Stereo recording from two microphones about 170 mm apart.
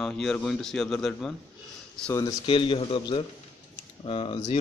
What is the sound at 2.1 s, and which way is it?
Speech, 25° left (ahead or behind).